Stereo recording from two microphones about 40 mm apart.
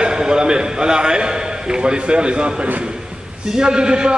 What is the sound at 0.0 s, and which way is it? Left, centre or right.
A man's voice, centre.